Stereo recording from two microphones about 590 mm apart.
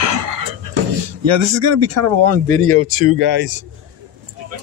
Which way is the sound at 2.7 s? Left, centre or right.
Centre.